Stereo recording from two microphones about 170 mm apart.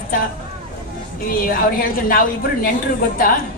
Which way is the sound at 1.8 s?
55° left (ahead or behind).